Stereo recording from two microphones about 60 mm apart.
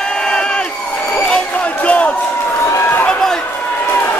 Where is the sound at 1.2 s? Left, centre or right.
Centre.